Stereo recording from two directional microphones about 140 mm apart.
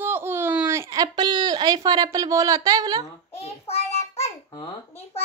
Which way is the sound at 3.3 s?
45° left (ahead or behind).